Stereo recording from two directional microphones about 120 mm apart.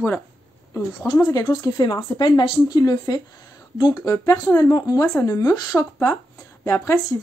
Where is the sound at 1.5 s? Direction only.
35° left (ahead or behind).